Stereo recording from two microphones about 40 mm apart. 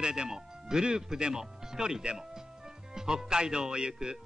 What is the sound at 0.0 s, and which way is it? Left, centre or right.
A man's voice, right.